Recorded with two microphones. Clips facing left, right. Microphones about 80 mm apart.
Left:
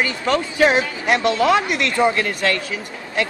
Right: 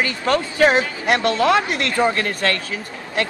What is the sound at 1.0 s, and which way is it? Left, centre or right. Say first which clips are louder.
Speech: left 1 dB; right.